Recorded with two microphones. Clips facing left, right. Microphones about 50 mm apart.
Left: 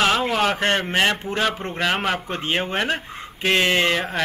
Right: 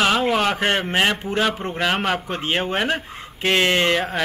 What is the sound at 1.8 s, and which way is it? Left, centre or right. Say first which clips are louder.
Speech: right 1 dB; centre.